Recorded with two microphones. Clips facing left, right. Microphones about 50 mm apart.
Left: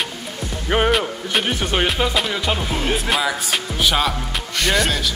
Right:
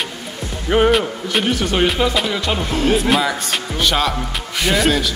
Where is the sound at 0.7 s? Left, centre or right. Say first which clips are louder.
Right 4 dB; centre.